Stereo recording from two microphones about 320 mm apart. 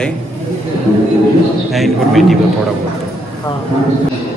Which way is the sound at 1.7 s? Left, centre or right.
Centre.